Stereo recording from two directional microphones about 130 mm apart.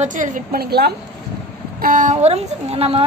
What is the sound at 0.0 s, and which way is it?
Speech, 85° right.